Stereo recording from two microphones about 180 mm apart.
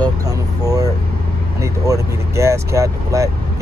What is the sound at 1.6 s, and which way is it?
Speech, 15° right (ahead or behind).